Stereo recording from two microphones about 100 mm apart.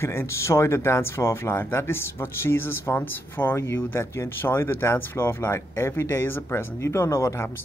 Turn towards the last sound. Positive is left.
turn(degrees=30)  # may be behind; listen again after turning